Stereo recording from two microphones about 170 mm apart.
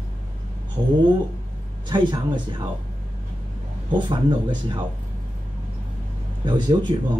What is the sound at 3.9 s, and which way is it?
Speech, 25° right (ahead or behind).